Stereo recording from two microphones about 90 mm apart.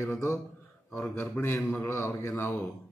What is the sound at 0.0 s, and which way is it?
Speech, 35° left (ahead or behind).